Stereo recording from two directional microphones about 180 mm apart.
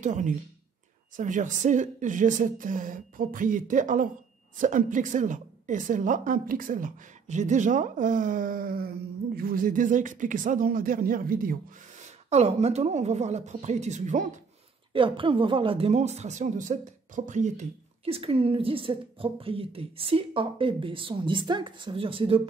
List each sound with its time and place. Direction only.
0.0 s a woman's voice: 45° right (ahead or behind)
12.3 s speech: 35° right (ahead or behind)
14.9 s speech: 30° right (ahead or behind)